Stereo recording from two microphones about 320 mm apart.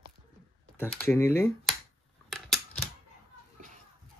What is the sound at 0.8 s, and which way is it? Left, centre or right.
Speech, centre.